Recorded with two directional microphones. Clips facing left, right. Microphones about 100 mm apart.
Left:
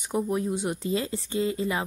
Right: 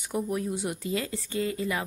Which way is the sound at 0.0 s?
25° left (ahead or behind).